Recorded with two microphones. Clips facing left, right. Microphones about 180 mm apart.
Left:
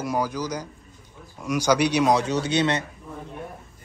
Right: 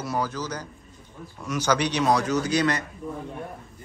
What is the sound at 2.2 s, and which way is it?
Speech, 30° left (ahead or behind).